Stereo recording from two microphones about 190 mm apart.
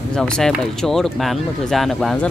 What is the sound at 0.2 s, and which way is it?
Speech, centre (ahead or behind).